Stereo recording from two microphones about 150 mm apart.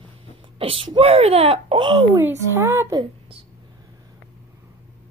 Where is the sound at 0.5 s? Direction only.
40° right (ahead or behind).